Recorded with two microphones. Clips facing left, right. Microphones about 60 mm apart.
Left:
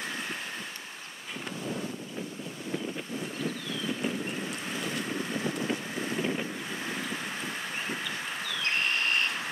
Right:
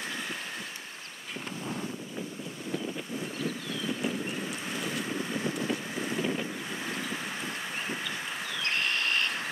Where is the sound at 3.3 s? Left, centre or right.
Centre.